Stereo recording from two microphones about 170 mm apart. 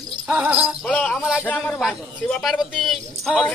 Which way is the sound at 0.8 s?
5° left (ahead or behind).